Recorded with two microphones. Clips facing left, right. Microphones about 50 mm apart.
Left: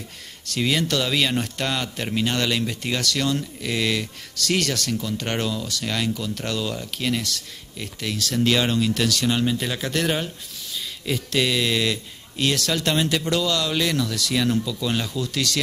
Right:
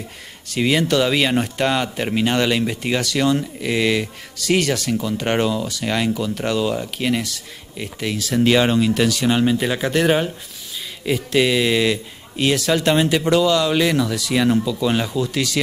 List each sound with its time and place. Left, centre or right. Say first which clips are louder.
0.5 s speech: right 5 dB; centre